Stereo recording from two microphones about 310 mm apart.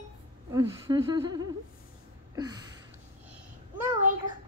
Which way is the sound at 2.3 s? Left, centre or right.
Centre.